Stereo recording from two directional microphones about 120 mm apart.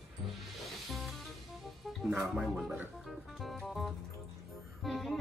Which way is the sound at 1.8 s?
Centre (ahead or behind).